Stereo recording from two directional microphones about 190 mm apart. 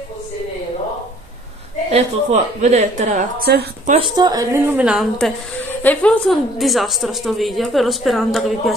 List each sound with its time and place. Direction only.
1.9 s a woman's voice: 35° right (ahead or behind)
3.4 s a woman's voice: 55° right (ahead or behind)
3.9 s a woman's voice: 25° right (ahead or behind); by 5.3 s 5° right (ahead or behind)
5.7 s a woman's voice: 10° left (ahead or behind)